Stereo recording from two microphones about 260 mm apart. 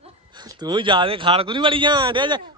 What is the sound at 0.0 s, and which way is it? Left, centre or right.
A man's voice, centre.